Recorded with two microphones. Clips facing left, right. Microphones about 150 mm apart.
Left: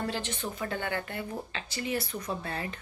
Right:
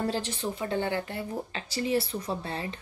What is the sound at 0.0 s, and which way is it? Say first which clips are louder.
Speech: right 3 dB; 35° right (ahead or behind).